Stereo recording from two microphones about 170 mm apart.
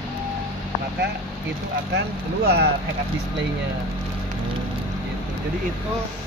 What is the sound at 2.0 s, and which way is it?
Speech, 70° right (ahead or behind).